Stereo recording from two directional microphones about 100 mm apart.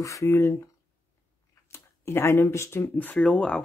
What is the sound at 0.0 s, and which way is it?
Speech, 35° left (ahead or behind).